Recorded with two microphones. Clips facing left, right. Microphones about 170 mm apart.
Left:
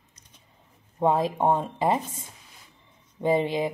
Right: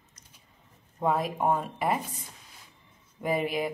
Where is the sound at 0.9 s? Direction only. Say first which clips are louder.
Left 4 dB; 25° left (ahead or behind).